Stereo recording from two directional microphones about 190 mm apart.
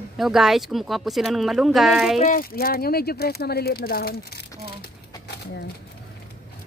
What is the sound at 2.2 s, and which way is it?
Speech, 50° left (ahead or behind).